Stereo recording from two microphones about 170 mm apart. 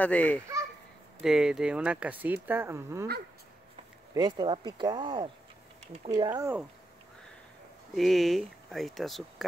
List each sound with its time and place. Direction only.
0.0 s a child's voice: 10° left (ahead or behind)
1.2 s speech: 5° right (ahead or behind)
4.1 s speech: 25° right (ahead or behind)
7.9 s speech: centre (ahead or behind)